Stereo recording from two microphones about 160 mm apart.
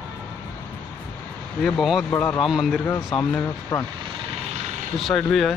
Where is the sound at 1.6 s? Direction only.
Centre (ahead or behind).